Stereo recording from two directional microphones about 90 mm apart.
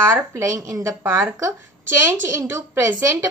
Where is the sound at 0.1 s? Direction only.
35° right (ahead or behind).